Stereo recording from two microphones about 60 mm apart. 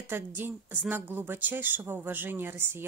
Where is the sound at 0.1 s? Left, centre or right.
Right.